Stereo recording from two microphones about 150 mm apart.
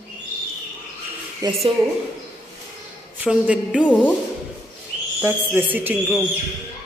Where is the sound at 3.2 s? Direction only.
5° right (ahead or behind).